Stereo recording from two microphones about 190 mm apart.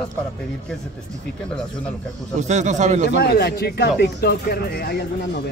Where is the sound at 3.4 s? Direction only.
55° left (ahead or behind).